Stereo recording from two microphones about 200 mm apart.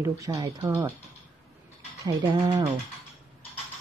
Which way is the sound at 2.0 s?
20° right (ahead or behind).